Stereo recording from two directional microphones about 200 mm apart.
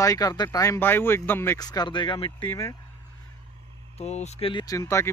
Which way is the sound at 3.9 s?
35° left (ahead or behind).